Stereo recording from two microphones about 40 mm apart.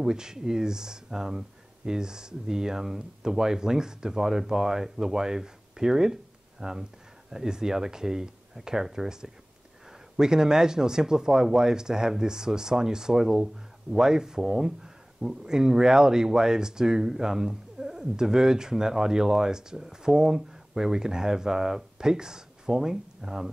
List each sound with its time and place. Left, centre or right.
0.0 s speech: centre